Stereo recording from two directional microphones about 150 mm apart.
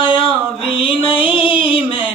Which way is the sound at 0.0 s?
35° left (ahead or behind).